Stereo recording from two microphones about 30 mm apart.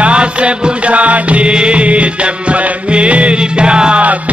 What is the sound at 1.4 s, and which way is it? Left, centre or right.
Music, right.